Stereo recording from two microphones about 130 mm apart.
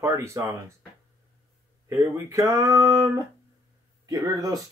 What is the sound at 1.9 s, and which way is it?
Speech, 25° right (ahead or behind).